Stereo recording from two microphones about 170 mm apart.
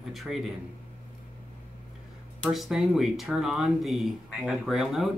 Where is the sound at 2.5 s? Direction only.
Centre (ahead or behind).